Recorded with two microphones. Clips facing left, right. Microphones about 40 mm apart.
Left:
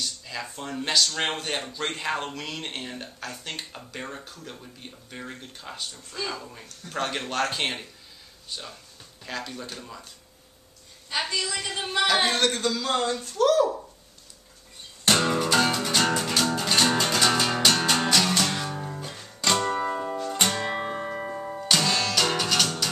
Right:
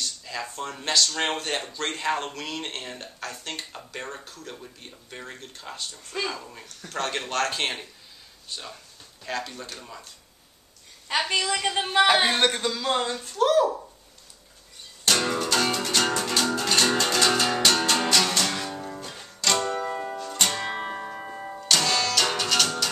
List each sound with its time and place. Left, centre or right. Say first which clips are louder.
0.0 s a man's voice: right 1 dB; centre
11.1 s a woman's voice: right 3 dB; right; by 13.7 s centre
15.2 s music: left 2 dB; centre
20.5 s music: left 1 dB; centre
20.9 s music: left 3 dB; centre